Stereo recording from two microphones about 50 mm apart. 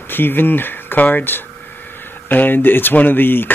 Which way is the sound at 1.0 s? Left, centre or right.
Left.